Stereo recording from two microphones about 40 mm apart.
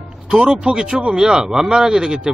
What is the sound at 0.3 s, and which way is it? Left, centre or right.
Speech, centre.